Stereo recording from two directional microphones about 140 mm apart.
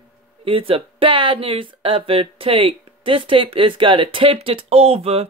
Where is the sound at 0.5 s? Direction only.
40° right (ahead or behind).